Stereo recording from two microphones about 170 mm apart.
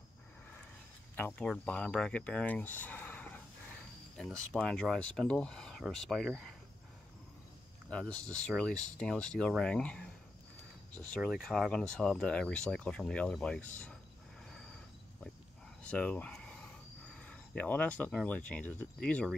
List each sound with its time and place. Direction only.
1.1 s speech: 10° left (ahead or behind)
4.5 s speech: 5° left (ahead or behind)
7.9 s speech: 5° left (ahead or behind)
11.1 s speech: centre (ahead or behind)
15.8 s a sound: 10° left (ahead or behind)
17.2 s speech: 5° left (ahead or behind)